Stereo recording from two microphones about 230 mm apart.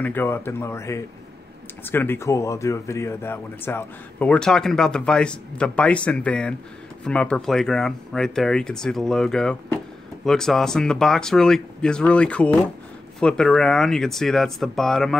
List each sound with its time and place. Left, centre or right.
0.0 s a man's voice: centre